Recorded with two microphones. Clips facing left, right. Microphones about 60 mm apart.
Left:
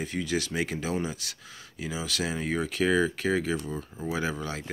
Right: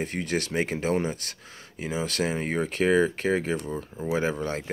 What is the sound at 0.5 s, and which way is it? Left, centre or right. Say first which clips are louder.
Speech: right 4 dB; right.